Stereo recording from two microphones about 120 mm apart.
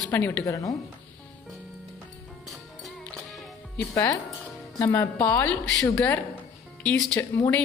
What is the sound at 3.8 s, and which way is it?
Speech, 25° left (ahead or behind).